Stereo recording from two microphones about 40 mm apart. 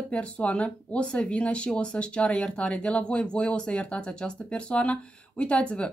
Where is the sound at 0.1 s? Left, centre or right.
Left.